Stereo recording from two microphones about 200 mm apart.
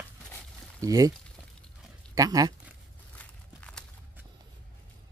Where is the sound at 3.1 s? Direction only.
5° left (ahead or behind).